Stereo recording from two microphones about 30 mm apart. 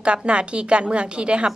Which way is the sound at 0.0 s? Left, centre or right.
Right.